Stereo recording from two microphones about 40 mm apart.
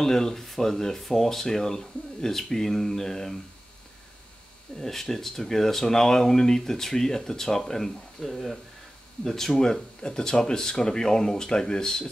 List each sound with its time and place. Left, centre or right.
0.0 s speech: centre
4.7 s speech: centre
10.0 s speech: centre